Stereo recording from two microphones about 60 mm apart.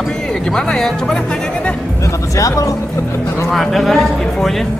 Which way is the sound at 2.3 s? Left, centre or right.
Left.